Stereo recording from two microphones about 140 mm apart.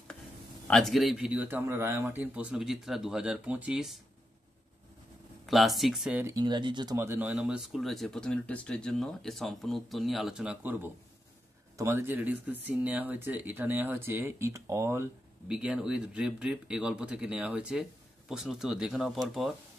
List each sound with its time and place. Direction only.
0.7 s speech: 5° left (ahead or behind)
5.5 s speech: centre (ahead or behind)
6.1 s speech: 20° right (ahead or behind)
6.4 s speech: 30° right (ahead or behind)
7.0 s speech: 15° right (ahead or behind)
7.2 s speech: 5° right (ahead or behind)
15.4 s speech: 5° right (ahead or behind)